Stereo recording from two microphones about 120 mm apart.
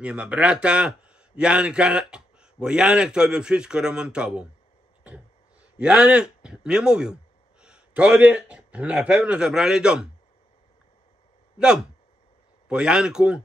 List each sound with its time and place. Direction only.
0.0 s a man's voice: 10° right (ahead or behind)
5.8 s a man's voice: 10° right (ahead or behind)
11.5 s a man's voice: 5° right (ahead or behind)